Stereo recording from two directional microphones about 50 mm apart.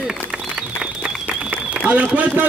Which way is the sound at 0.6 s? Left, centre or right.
Centre.